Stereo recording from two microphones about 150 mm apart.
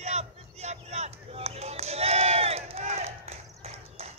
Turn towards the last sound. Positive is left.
turn(degrees=-45)  # may be behind; listen again after turning